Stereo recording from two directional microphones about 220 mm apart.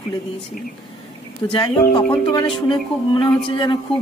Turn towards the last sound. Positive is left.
turn(degrees=20)  # may be behind; listen again after turning